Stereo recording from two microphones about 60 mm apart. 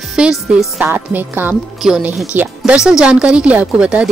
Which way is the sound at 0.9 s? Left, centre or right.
Right.